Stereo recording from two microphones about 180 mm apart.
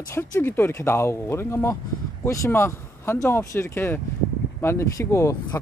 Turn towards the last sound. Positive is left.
turn(degrees=15)  # may be behind; listen again after turning